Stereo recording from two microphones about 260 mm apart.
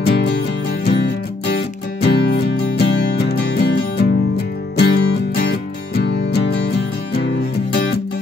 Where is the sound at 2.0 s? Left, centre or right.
Left.